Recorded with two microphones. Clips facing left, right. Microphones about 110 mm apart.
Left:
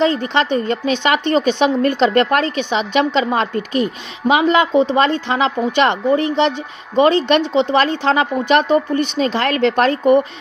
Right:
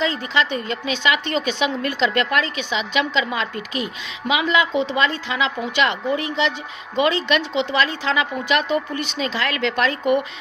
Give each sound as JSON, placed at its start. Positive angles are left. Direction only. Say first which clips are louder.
{"t": 0.0, "sound": "a woman's voice", "louder": "left 6 dB", "side_deg": 50}